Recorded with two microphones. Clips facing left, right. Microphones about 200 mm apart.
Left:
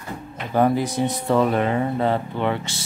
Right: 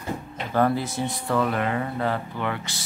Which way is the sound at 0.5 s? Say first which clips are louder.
Left 3 dB; 15° left (ahead or behind).